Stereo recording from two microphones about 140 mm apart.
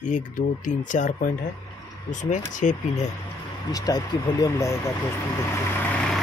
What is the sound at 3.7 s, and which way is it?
Speech, 25° left (ahead or behind).